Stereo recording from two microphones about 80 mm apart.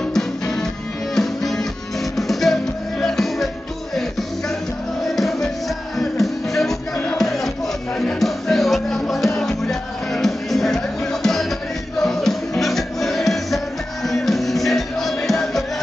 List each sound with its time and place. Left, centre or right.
1.1 s music: centre
5.0 s music: centre
12.0 s music: centre